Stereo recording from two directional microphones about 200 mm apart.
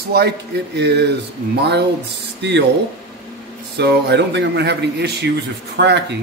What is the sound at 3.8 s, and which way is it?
A man's voice, 55° right (ahead or behind).